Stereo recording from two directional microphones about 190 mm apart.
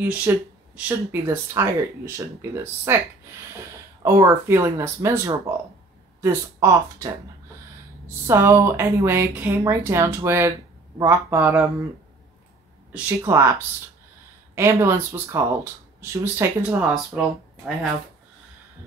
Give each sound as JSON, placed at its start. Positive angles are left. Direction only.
{"t": 0.0, "sound": "speech", "side_deg": -10}
{"t": 4.0, "sound": "speech", "side_deg": -15}
{"t": 8.3, "sound": "speech", "side_deg": -15}
{"t": 12.9, "sound": "speech", "side_deg": -15}
{"t": 14.5, "sound": "speech", "side_deg": -15}